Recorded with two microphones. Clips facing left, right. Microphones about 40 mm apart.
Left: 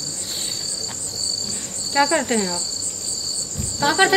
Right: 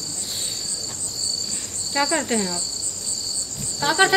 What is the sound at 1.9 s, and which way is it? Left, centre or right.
Cricket, centre.